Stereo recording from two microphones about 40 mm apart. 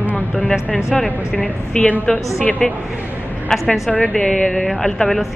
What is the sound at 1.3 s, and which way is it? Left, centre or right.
A woman's voice, left.